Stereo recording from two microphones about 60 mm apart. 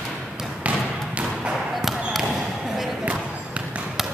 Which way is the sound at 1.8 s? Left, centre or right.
Centre.